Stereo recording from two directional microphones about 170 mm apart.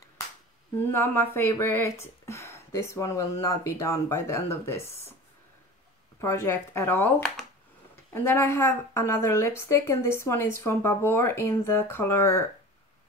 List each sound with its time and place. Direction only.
0.9 s speech: 15° left (ahead or behind)
6.2 s speech: 15° left (ahead or behind)